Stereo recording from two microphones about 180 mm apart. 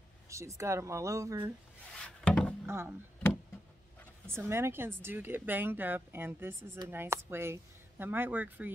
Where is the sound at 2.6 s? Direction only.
15° right (ahead or behind).